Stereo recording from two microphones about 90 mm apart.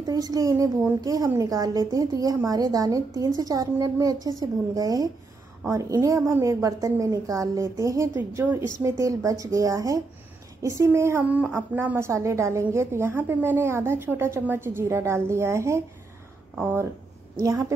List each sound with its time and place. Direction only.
0.0 s a woman's voice: 45° right (ahead or behind); by 11.2 s 30° right (ahead or behind)
11.2 s a woman's voice: 15° right (ahead or behind)
16.5 s speech: 20° right (ahead or behind)
17.4 s a woman's voice: 35° right (ahead or behind)